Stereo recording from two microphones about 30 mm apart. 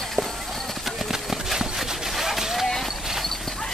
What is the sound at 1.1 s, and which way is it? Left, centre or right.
Horse, centre.